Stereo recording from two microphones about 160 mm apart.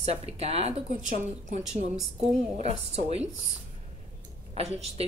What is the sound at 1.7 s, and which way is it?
A woman's voice, 45° right (ahead or behind).